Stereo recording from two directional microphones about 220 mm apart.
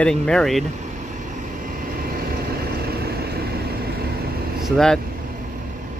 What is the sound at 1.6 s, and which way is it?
Vehicle, 40° right (ahead or behind).